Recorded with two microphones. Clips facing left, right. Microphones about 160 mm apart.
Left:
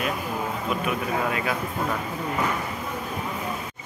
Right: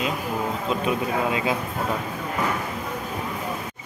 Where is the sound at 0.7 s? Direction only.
25° right (ahead or behind).